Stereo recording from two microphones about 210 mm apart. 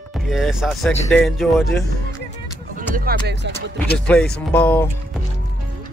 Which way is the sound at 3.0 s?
50° right (ahead or behind).